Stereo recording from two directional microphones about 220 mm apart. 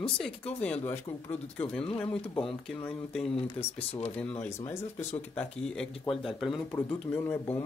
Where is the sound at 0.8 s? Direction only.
10° left (ahead or behind).